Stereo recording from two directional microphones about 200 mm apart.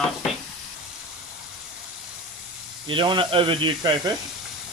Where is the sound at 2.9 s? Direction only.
25° right (ahead or behind).